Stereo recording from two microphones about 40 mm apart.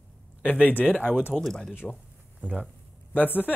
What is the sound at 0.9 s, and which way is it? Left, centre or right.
Speech, right.